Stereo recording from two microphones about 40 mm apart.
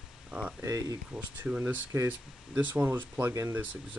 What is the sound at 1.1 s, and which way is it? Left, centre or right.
Speech, centre.